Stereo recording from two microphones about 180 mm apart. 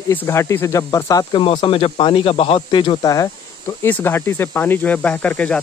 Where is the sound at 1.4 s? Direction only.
30° left (ahead or behind); by 5.6 s 5° left (ahead or behind).